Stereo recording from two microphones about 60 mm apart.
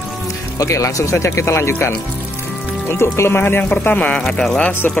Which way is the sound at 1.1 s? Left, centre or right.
Left.